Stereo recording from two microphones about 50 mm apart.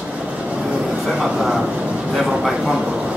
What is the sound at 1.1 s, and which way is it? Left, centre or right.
Speech, centre.